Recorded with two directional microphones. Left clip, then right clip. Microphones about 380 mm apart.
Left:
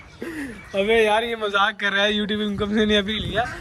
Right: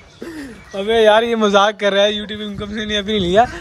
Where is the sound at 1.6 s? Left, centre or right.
Centre.